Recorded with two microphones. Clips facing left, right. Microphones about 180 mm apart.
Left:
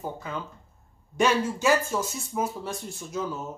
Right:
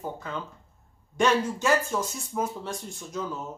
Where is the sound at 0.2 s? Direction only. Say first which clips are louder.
Even; 5° left (ahead or behind).